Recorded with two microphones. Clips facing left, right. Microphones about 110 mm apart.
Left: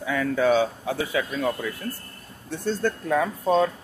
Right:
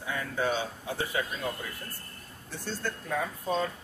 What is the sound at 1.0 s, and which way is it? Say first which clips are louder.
Speech: left 6 dB; 90° left.